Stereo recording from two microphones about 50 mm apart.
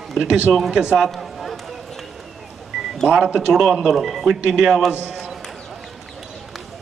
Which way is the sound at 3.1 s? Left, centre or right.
Right.